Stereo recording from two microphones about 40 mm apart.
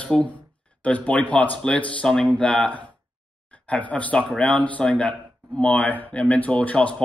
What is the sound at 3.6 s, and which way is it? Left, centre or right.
Speech, left.